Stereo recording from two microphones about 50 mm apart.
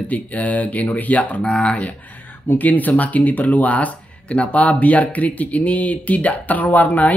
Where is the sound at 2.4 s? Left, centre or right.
Left.